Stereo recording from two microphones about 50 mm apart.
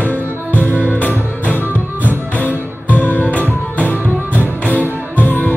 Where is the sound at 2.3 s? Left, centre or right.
Left.